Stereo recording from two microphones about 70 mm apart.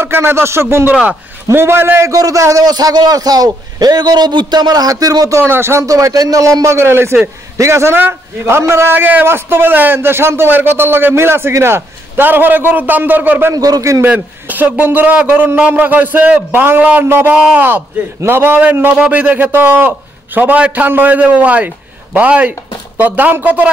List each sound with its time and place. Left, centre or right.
0.0 s a man's voice: right
2.0 s a man's voice: right
5.4 s a man's voice: right
5.9 s a man's voice: right
6.6 s a man's voice: right
13.5 s a man's voice: right
14.0 s a man's voice: right
17.6 s a man's voice: right
18.6 s a man's voice: right